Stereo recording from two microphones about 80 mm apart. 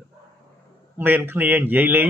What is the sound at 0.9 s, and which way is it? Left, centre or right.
Speech, right.